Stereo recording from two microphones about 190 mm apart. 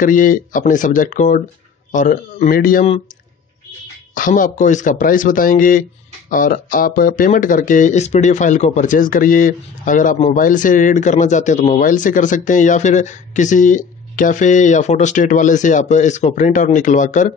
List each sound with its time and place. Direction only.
0.0 s speech: 45° left (ahead or behind)
4.1 s speech: 45° left (ahead or behind)